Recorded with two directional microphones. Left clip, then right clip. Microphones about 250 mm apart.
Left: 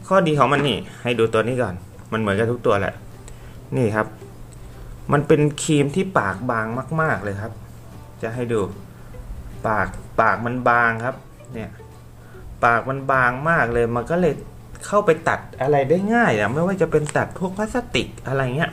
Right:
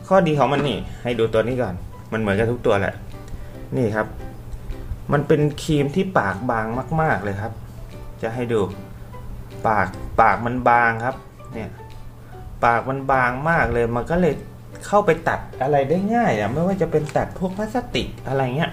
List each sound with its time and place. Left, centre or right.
0.0 s speech: centre
16.2 s speech: left